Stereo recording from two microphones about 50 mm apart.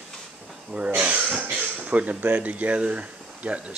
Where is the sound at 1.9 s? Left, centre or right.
Right.